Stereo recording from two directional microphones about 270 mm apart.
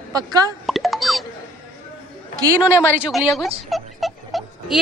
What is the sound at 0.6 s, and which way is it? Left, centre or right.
Plop, centre.